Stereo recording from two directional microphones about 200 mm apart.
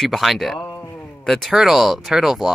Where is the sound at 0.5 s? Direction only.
20° left (ahead or behind).